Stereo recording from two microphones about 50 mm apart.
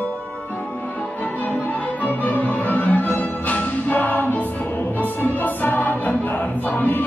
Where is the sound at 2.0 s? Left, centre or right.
Left.